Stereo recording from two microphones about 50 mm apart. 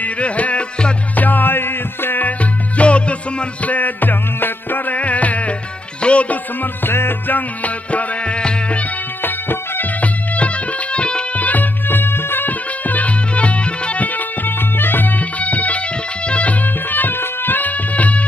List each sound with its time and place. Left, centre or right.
0.0 s music: left
1.1 s music: left
2.8 s music: left
9.2 s music: left
11.3 s music: left
12.4 s music: left